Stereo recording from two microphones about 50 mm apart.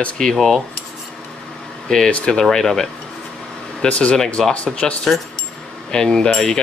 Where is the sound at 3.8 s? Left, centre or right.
Left.